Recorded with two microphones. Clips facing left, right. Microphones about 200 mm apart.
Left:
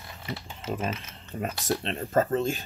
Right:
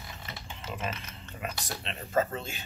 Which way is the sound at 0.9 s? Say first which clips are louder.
Left 4 dB; centre (ahead or behind).